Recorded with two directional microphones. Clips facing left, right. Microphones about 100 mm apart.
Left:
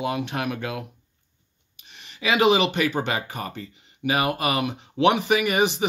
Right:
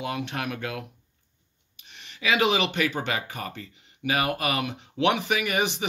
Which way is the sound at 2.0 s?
20° left (ahead or behind).